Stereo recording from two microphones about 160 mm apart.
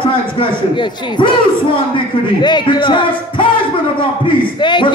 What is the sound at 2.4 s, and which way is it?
Speech, 25° left (ahead or behind).